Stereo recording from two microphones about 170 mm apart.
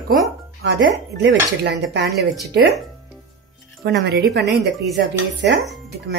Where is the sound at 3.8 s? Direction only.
75° right (ahead or behind).